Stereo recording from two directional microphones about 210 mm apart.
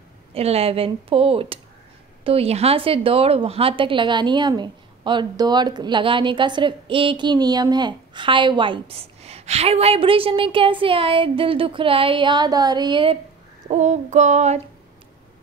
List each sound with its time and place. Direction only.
0.3 s a woman's voice: 30° right (ahead or behind)
13.7 s child singing: 35° right (ahead or behind)